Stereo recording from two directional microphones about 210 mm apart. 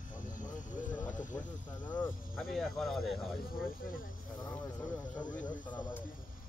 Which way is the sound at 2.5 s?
Centre (ahead or behind).